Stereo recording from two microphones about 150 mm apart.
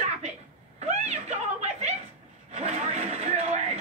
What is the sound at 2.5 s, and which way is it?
Vehicle, 50° right (ahead or behind).